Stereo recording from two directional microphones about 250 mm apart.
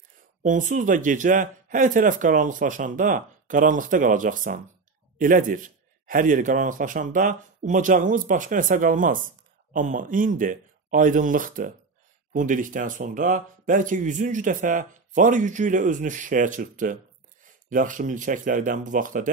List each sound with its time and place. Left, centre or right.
0.4 s a man's voice: right